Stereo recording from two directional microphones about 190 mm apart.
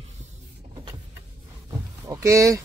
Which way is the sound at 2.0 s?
15° right (ahead or behind).